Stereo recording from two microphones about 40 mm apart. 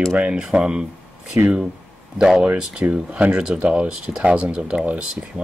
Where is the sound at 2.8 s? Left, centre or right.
Right.